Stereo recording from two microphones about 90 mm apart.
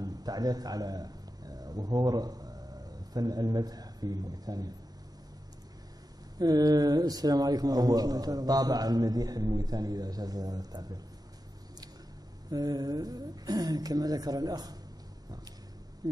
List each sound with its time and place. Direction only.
0.0 s a man's voice: 45° right (ahead or behind)
6.3 s a man's voice: 45° right (ahead or behind)
12.4 s a man's voice: 45° right (ahead or behind)